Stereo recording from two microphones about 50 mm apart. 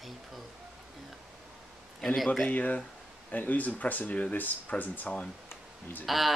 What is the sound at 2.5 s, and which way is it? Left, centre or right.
Speech, left.